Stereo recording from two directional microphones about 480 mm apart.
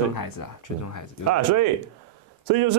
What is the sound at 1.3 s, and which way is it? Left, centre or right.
Speech, right.